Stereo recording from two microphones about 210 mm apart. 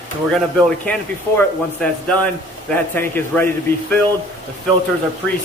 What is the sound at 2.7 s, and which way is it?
Speech, 10° left (ahead or behind).